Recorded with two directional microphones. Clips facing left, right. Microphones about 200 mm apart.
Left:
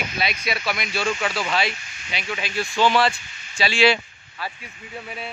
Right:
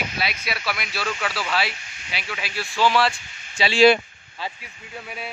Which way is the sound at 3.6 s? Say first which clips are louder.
Right 1 dB; 20° right (ahead or behind).